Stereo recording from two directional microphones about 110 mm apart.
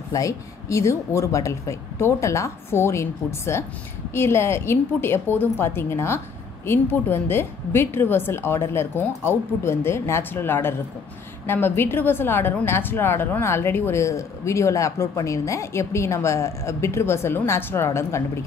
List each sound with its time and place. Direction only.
0.1 s a woman's voice: 30° left (ahead or behind)